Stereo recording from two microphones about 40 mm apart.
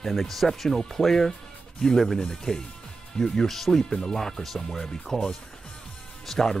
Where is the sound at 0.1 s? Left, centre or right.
Centre.